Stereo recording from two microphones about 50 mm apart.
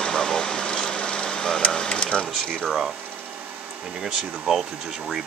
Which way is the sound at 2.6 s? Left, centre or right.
Centre.